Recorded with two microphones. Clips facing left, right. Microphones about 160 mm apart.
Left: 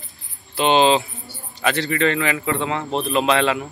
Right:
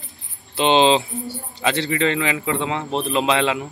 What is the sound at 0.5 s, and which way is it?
A man's voice, 25° right (ahead or behind).